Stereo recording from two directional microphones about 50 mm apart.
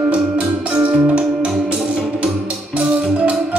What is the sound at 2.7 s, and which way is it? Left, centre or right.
Music, right.